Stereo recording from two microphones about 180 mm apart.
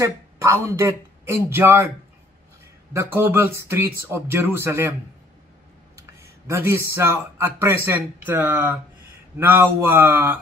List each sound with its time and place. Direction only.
0.0 s speech: 15° right (ahead or behind)
2.9 s speech: 15° right (ahead or behind)
5.9 s speech: 15° right (ahead or behind)